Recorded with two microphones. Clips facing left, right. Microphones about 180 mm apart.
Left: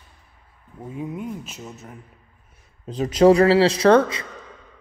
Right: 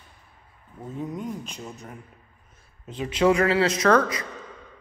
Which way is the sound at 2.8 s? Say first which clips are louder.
Left 6 dB; 40° left (ahead or behind).